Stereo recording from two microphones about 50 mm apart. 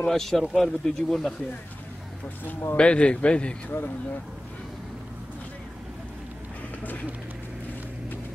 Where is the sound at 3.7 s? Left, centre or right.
Left.